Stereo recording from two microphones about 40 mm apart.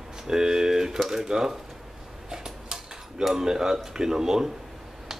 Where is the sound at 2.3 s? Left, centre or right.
Centre.